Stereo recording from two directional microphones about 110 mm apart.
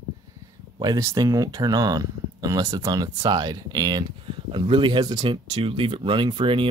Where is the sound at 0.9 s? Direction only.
30° right (ahead or behind).